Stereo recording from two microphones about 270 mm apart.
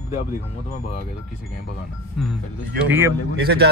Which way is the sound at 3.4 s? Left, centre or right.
Right.